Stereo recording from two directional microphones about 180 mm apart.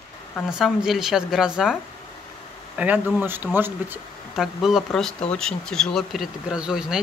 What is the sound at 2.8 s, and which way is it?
Speech, 10° right (ahead or behind).